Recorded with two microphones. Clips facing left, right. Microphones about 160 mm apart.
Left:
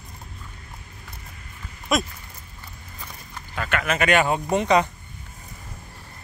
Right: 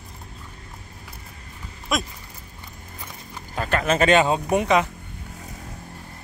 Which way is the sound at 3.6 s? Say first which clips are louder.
Right 3 dB; 35° right (ahead or behind).